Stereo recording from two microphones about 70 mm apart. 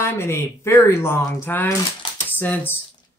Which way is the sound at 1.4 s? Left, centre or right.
Left.